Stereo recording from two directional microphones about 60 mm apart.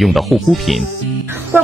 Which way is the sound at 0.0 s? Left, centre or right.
Centre.